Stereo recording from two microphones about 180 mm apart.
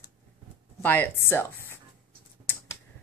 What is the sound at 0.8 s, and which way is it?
Speech, 10° left (ahead or behind).